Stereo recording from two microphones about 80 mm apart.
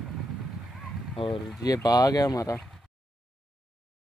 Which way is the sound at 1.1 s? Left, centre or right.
Left.